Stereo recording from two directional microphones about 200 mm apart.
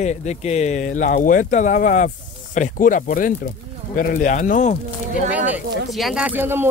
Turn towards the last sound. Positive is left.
turn(degrees=-10)  # may be behind; listen again after turning